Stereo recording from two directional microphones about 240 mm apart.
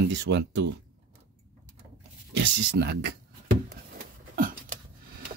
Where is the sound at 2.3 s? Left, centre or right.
Right.